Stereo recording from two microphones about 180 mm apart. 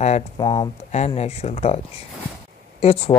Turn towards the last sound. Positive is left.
turn(degrees=35)  # may be behind; listen again after turning